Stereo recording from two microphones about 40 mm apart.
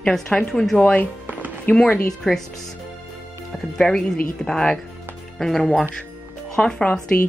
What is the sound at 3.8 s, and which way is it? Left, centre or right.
A woman's voice, centre.